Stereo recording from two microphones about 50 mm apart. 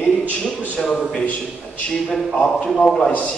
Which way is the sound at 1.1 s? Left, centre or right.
Left.